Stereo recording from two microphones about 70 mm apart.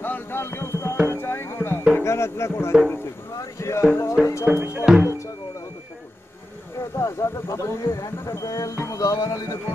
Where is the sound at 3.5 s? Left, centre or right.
Left.